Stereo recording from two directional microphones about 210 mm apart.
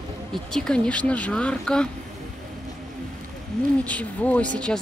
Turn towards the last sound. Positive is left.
turn(degrees=5)  # may be behind; listen again after turning